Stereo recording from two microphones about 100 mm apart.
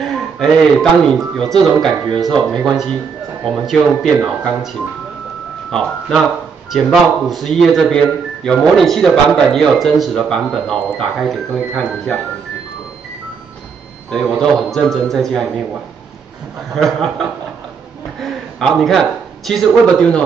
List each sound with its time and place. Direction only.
0.0 s a man's voice: 5° left (ahead or behind)
2.1 s speech: 40° right (ahead or behind)
2.5 s a man's voice: centre (ahead or behind)
5.7 s a man's voice: 5° left (ahead or behind)
14.4 s a man's voice: 5° left (ahead or behind)
16.7 s a man's voice: centre (ahead or behind)